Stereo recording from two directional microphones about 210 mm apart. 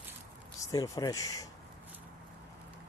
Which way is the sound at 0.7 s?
15° left (ahead or behind).